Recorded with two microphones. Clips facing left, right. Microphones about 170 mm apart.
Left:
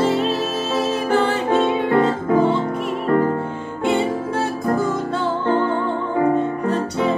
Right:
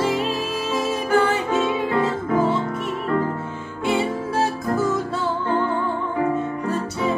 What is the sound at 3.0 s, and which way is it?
Music, 50° left (ahead or behind).